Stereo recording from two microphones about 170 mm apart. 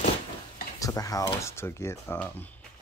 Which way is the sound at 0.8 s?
20° left (ahead or behind).